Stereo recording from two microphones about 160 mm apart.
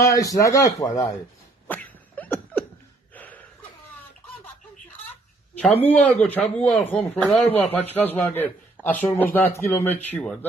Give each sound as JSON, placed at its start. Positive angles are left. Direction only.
{"t": 0.0, "sound": "speech", "side_deg": 20}
{"t": 1.7, "sound": "a sound", "side_deg": 10}
{"t": 5.6, "sound": "speech", "side_deg": 10}
{"t": 8.8, "sound": "speech", "side_deg": -10}
{"t": 9.1, "sound": "speech", "side_deg": 10}